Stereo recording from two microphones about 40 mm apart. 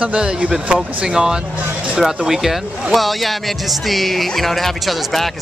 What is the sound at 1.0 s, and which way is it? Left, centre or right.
Speech, centre.